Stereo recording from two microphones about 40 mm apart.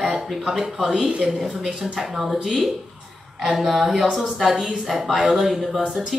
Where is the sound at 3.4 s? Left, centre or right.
Centre.